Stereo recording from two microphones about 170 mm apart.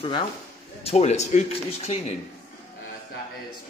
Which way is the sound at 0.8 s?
40° left (ahead or behind).